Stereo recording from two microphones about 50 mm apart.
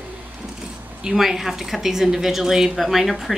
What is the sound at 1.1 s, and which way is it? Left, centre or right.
Speech, centre.